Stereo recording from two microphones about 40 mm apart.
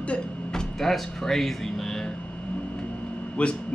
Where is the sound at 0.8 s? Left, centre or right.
Centre.